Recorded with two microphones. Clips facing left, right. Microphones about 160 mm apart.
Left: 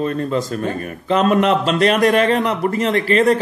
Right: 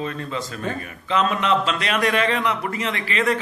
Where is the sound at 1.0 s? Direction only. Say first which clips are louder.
Left 6 dB; 45° left (ahead or behind).